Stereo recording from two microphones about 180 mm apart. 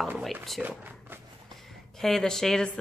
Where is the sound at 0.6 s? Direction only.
10° right (ahead or behind).